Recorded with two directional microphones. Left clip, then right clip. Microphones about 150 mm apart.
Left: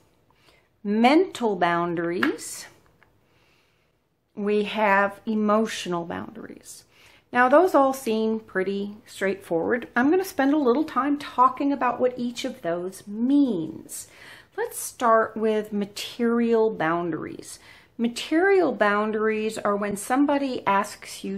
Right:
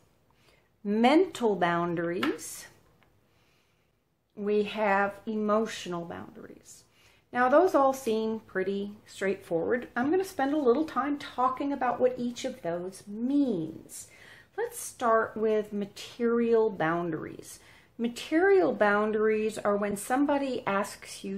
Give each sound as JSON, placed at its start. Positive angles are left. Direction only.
{"t": 0.8, "sound": "speech", "side_deg": 15}
{"t": 4.4, "sound": "speech", "side_deg": 30}